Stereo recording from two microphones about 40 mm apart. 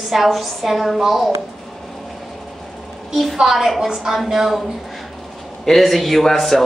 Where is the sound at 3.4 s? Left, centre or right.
Centre.